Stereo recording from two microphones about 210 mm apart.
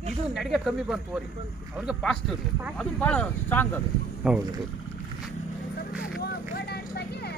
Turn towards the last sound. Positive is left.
turn(degrees=50)  # may be behind; listen again after turning